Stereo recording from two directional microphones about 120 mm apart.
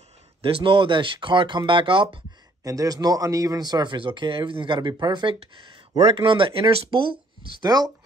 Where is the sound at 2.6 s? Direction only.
30° right (ahead or behind).